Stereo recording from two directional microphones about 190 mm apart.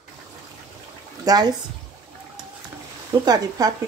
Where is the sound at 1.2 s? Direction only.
20° right (ahead or behind).